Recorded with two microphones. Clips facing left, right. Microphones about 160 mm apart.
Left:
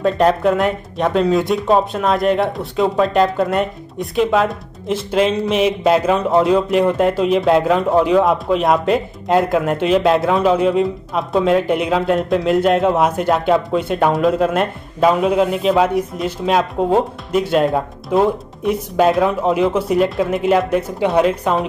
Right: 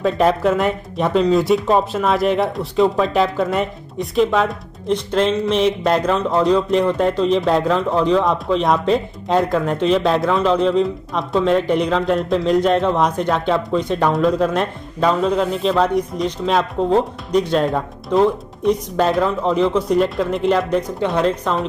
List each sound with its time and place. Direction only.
0.0 s speech: centre (ahead or behind)